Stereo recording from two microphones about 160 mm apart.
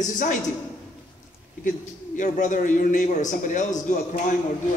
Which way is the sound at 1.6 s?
50° left (ahead or behind).